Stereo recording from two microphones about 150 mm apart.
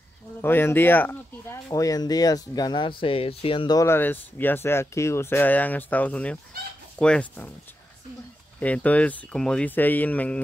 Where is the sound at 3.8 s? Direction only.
15° left (ahead or behind).